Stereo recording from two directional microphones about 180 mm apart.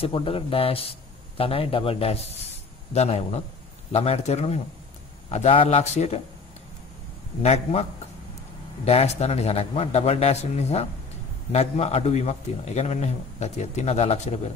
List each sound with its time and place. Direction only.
0.0 s a man's voice: 30° left (ahead or behind)
7.4 s a man's voice: 35° left (ahead or behind)
8.8 s a man's voice: 35° left (ahead or behind)